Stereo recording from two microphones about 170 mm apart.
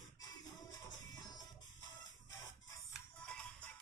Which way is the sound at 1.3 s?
25° left (ahead or behind).